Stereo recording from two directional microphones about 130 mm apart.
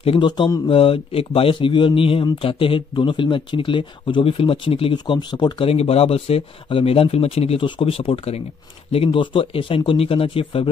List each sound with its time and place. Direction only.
0.0 s speech: 45° left (ahead or behind)
5.7 s speech: 50° left (ahead or behind)